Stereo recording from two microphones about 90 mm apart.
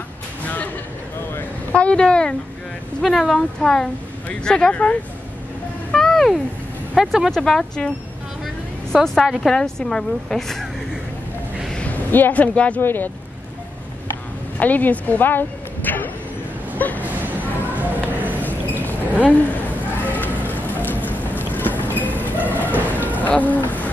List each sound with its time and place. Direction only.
1.7 s a woman's voice: 15° left (ahead or behind)
3.0 s speech: centre (ahead or behind)
5.9 s vehicle: 5° left (ahead or behind)
7.0 s speech: centre (ahead or behind)
8.9 s speech: 5° left (ahead or behind)
11.7 s speech: 15° left (ahead or behind)
14.6 s a woman's voice: 20° left (ahead or behind)
16.7 s a sound: 20° left (ahead or behind)
17.0 s a sound: 20° right (ahead or behind)
17.7 s music: 20° right (ahead or behind)
18.4 s a sound: 20° left (ahead or behind)
20.1 s vehicle: 20° left (ahead or behind)
23.1 s a sound: 20° left (ahead or behind)